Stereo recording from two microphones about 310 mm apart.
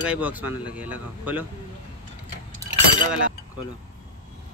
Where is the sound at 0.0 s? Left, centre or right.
Centre.